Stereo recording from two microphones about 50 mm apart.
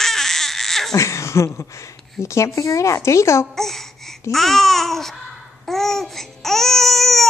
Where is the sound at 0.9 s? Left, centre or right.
Left.